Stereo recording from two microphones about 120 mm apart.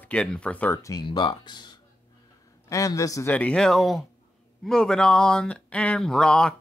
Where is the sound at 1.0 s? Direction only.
40° left (ahead or behind).